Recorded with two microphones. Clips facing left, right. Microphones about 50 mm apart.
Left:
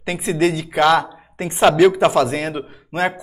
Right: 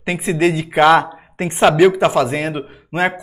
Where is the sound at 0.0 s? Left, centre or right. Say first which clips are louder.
Right 2 dB; centre.